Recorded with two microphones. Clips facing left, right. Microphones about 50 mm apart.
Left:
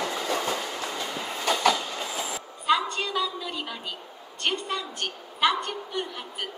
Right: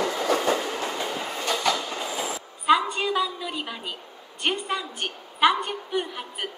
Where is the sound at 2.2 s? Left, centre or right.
Centre.